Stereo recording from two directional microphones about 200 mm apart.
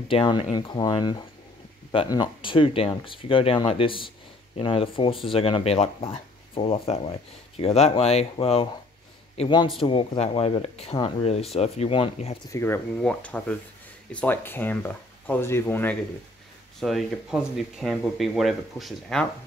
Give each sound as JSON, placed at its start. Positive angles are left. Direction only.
{"t": 0.1, "sound": "speech", "side_deg": 25}
{"t": 12.5, "sound": "speech", "side_deg": 10}